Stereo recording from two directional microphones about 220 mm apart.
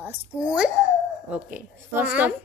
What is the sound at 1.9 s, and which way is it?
Speech, 10° right (ahead or behind).